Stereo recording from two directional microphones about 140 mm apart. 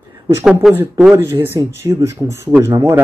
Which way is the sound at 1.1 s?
20° right (ahead or behind).